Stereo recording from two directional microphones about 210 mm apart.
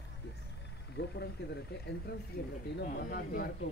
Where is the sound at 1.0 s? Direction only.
55° left (ahead or behind).